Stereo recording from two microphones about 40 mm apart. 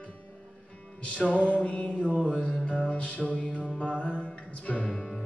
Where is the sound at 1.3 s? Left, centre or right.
Left.